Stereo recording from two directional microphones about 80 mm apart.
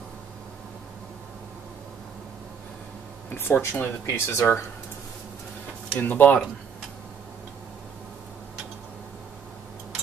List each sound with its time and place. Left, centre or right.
3.3 s speech: left
4.0 s speech: left
5.9 s speech: left